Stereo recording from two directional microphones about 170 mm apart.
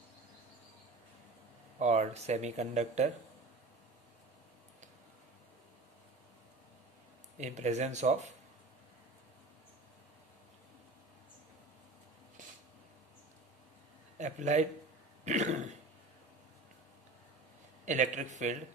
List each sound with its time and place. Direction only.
1.8 s speech: 40° right (ahead or behind)
7.3 s speech: 45° right (ahead or behind)
14.1 s a man's voice: 45° right (ahead or behind)
15.2 s cough: 45° right (ahead or behind)
17.8 s speech: 45° right (ahead or behind)